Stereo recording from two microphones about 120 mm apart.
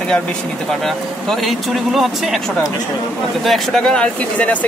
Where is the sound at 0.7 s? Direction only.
Centre (ahead or behind).